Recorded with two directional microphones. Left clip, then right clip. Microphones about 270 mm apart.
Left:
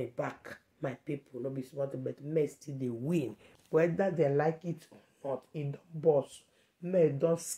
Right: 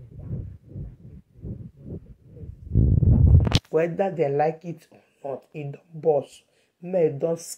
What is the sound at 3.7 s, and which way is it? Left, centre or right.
Speech, centre.